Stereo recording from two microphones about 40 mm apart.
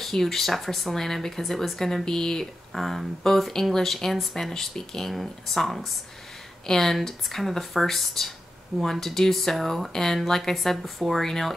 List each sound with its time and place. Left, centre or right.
0.0 s speech: centre
2.7 s speech: centre
10.8 s speech: centre
11.1 s speech: centre